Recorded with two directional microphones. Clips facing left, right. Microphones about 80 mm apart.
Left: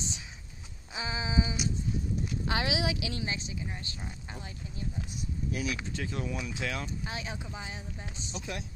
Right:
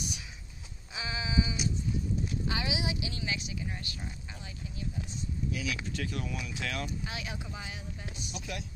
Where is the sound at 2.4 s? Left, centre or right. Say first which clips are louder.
Left 6 dB; left.